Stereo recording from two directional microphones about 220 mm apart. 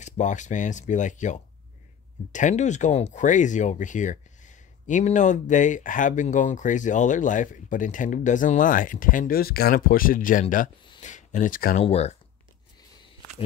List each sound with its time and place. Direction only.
0.0 s speech: 35° left (ahead or behind)